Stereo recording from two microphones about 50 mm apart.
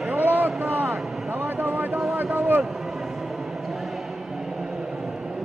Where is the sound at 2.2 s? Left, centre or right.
Right.